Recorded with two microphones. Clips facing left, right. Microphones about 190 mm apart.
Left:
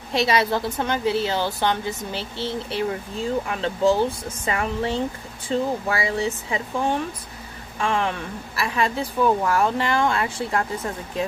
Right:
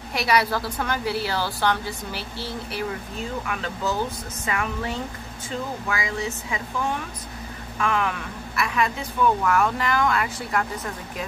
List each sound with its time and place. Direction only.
0.1 s a woman's voice: 25° left (ahead or behind)